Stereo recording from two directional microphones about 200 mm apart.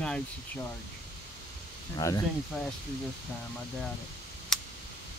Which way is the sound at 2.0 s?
15° left (ahead or behind).